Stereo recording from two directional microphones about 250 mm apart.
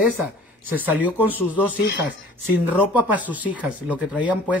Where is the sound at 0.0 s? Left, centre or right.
Centre.